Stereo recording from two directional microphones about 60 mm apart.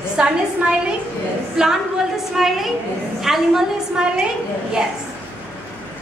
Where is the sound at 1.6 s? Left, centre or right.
Centre.